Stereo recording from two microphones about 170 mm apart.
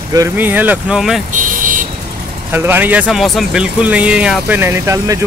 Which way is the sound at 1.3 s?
50° right (ahead or behind).